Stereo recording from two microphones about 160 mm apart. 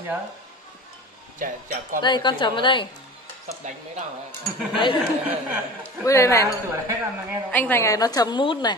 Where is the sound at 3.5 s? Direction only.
50° right (ahead or behind).